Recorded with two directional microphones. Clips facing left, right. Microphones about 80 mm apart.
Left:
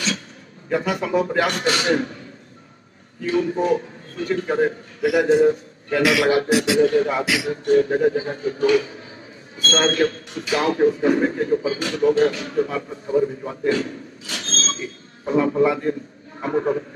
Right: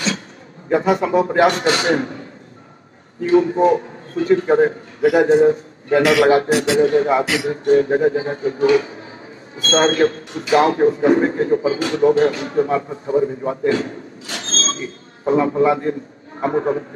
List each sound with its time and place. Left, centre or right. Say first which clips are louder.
0.7 s speech: right 6 dB; right
3.3 s speech: right 6 dB; right